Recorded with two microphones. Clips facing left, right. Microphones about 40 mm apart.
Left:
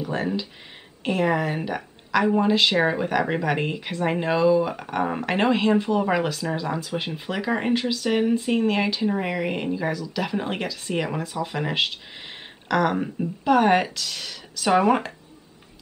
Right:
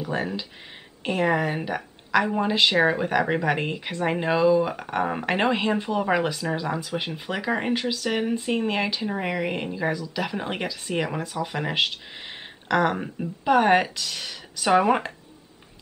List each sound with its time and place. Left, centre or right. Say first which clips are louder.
1.0 s a woman's voice: even; centre